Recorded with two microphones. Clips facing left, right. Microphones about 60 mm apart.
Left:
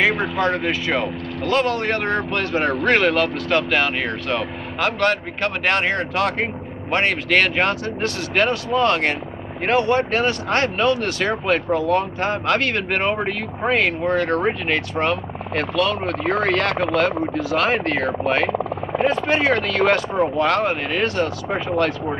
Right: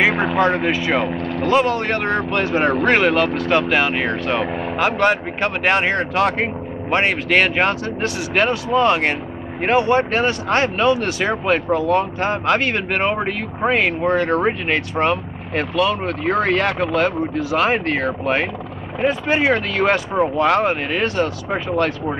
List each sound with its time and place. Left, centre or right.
0.1 s vehicle: right
0.4 s speech: centre